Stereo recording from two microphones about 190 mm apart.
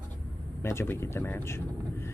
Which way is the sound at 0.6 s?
15° left (ahead or behind).